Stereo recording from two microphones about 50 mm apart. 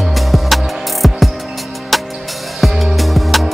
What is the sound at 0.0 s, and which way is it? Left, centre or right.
Music, centre.